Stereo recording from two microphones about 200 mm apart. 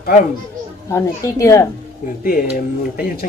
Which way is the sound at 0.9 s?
15° left (ahead or behind).